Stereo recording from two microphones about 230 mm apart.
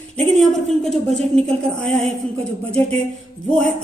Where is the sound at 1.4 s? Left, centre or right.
Right.